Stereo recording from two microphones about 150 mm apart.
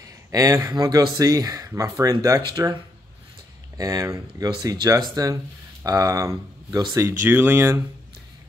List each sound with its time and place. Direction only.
0.3 s speech: 25° right (ahead or behind)